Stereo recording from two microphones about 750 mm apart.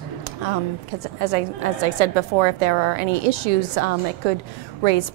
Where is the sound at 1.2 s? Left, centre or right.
Right.